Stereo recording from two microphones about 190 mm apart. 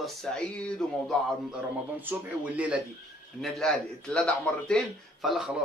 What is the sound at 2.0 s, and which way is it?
A man's voice, 10° right (ahead or behind).